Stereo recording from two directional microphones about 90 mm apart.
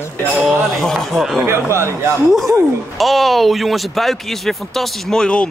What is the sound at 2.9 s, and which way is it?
Speech, centre (ahead or behind).